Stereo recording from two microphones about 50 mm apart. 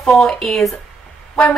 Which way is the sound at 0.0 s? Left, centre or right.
Centre.